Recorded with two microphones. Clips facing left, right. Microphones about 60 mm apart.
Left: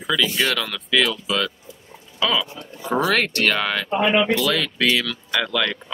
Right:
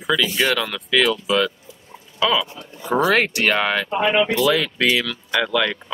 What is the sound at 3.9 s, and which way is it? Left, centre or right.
Speech, centre.